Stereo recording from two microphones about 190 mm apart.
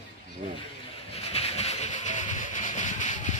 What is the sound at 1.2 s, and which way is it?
Vehicle, 30° left (ahead or behind).